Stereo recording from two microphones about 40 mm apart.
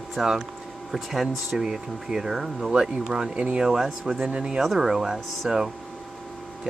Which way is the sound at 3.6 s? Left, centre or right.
Centre.